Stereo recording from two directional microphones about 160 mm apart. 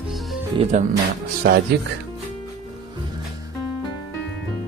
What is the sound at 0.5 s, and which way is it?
Speech, 30° right (ahead or behind).